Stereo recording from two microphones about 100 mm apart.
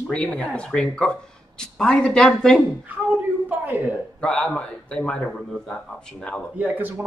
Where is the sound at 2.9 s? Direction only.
15° right (ahead or behind).